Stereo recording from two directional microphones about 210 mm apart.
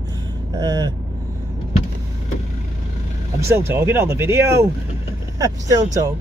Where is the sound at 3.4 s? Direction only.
10° right (ahead or behind).